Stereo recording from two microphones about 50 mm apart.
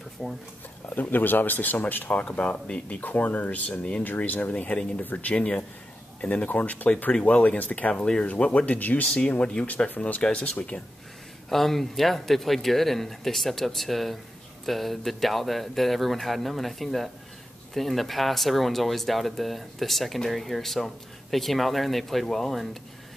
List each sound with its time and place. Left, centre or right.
0.2 s speech: centre
0.8 s speech: left
2.1 s speech: left
3.0 s speech: left
4.3 s speech: left
7.9 s speech: left
9.3 s speech: left
10.2 s speech: centre
11.4 s speech: centre